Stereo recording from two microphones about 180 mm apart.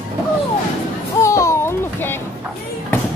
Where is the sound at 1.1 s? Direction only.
15° left (ahead or behind).